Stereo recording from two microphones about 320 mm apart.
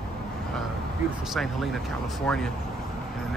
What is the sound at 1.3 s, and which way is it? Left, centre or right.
Speech, centre.